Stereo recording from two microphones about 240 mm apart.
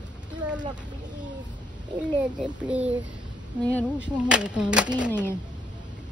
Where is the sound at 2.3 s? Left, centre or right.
Centre.